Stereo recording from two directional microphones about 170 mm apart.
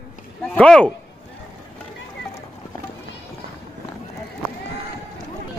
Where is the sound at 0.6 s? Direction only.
5° left (ahead or behind).